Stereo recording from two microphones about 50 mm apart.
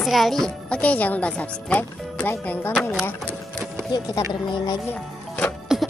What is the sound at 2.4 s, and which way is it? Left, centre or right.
Music, left.